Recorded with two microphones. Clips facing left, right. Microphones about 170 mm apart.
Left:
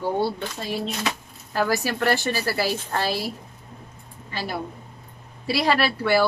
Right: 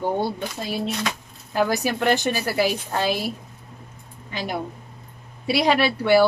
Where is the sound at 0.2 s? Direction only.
10° right (ahead or behind).